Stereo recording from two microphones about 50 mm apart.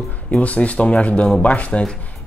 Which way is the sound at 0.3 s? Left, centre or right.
Left.